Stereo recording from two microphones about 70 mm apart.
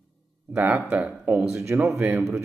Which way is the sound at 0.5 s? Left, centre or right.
Right.